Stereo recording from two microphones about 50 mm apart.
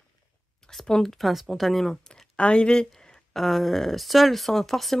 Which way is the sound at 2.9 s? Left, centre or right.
Centre.